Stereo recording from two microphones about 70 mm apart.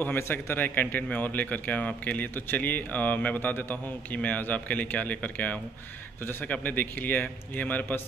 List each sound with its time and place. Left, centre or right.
0.2 s speech: left